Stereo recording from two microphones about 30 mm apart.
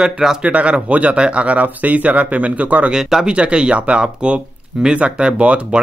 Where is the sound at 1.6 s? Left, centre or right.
Right.